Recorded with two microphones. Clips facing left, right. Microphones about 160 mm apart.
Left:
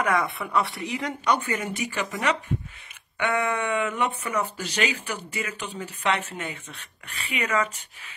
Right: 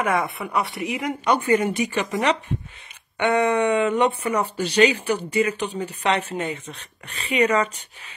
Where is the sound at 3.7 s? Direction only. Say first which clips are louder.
Right 6 dB; 30° right (ahead or behind).